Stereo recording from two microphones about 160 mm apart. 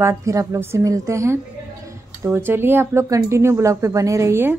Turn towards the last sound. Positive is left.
turn(degrees=-15)  # may be behind; listen again after turning